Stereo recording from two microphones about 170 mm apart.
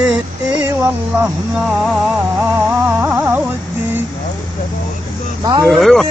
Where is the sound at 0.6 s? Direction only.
10° right (ahead or behind).